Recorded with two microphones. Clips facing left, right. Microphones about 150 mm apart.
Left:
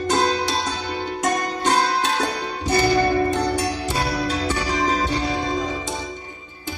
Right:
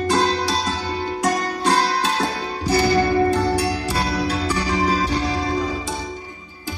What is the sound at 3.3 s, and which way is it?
Music, 20° left (ahead or behind).